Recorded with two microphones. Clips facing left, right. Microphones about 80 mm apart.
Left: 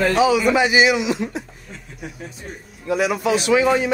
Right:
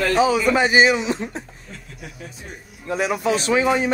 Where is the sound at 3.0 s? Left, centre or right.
Right.